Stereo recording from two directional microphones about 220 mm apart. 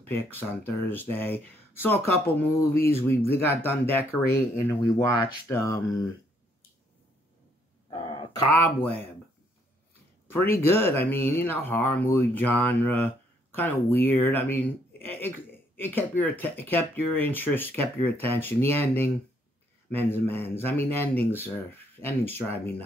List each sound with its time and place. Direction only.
0.0 s speech: 10° left (ahead or behind)
7.9 s dog: 20° left (ahead or behind)
8.5 s speech: 10° left (ahead or behind)
10.2 s speech: 10° left (ahead or behind)